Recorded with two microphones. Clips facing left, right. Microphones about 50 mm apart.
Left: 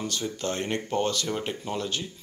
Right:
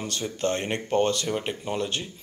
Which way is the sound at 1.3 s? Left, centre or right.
Centre.